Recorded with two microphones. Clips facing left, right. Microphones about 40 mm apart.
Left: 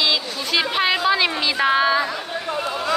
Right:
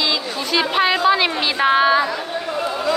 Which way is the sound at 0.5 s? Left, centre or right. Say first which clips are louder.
Right 2 dB; centre.